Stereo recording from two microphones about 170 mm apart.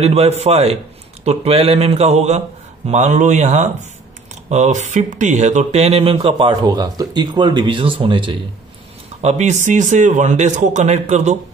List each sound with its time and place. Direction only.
0.0 s a man's voice: 40° right (ahead or behind)
9.2 s a man's voice: 40° right (ahead or behind)